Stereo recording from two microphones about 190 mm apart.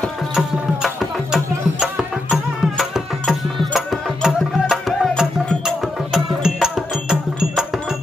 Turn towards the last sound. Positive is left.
turn(degrees=-5)  # may be behind; listen again after turning